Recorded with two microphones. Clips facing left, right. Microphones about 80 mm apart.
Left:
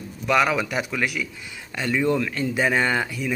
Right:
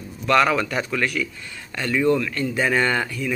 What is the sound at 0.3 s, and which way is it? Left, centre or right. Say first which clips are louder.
A man's voice: right 2 dB; centre.